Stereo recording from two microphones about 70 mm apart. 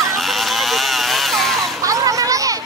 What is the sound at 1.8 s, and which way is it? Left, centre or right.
Children playing, right.